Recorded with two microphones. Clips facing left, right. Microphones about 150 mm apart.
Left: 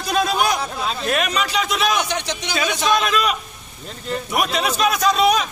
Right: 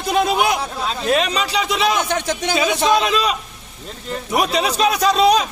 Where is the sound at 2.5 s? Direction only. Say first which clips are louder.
Right 4 dB; 15° right (ahead or behind).